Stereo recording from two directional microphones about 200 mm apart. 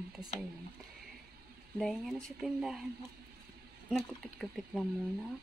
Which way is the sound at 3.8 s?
Centre (ahead or behind).